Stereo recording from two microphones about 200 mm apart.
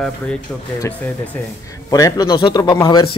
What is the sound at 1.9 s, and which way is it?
Speech, 20° left (ahead or behind).